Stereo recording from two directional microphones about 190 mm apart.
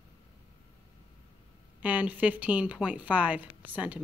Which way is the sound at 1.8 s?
10° right (ahead or behind).